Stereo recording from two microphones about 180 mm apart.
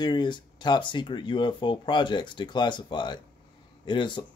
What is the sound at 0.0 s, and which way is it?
Speech, 25° left (ahead or behind).